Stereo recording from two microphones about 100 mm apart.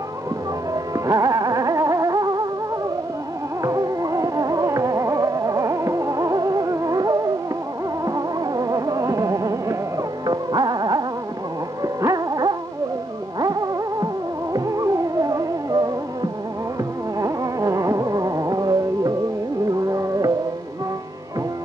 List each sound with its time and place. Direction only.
0.9 s music: 35° right (ahead or behind)
3.6 s music: 35° right (ahead or behind)